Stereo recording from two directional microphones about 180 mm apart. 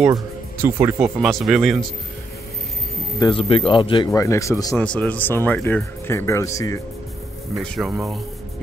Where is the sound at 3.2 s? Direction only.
30° left (ahead or behind).